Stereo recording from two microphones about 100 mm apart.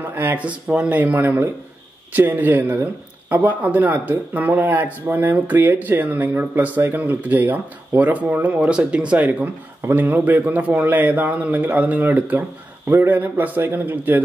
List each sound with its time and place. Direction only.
0.0 s a man's voice: 20° right (ahead or behind)